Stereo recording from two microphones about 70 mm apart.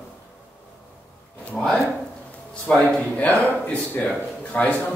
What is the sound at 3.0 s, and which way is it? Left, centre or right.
A man's voice, left.